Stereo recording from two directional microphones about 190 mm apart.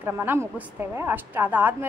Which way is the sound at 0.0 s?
10° right (ahead or behind).